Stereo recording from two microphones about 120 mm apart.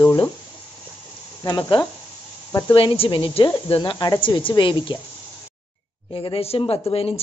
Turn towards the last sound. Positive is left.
turn(degrees=50)  # may be behind; listen again after turning